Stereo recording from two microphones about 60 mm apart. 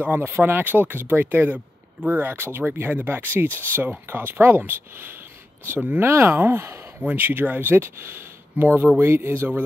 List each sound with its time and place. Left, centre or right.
0.0 s speech: right
5.9 s speech: right
9.0 s speech: right